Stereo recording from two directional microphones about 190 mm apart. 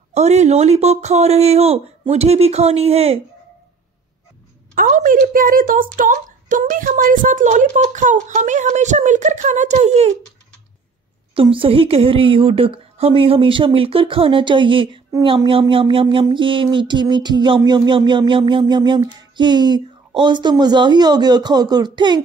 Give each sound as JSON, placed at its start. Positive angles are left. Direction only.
{"t": 0.1, "sound": "a woman's voice", "side_deg": -35}
{"t": 4.7, "sound": "a woman's voice", "side_deg": -45}
{"t": 11.3, "sound": "a woman's voice", "side_deg": -30}